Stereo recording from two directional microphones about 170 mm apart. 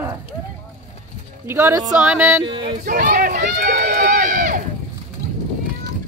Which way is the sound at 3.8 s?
50° right (ahead or behind).